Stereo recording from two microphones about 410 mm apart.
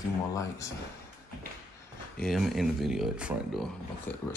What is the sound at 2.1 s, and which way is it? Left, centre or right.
Speech, centre.